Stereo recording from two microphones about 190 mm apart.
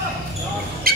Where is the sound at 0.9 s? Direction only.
50° right (ahead or behind).